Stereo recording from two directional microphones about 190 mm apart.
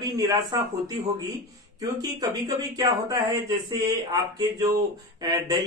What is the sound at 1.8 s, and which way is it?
Speech, 20° right (ahead or behind).